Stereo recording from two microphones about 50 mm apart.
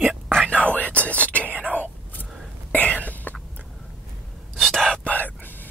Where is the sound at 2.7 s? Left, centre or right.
Left.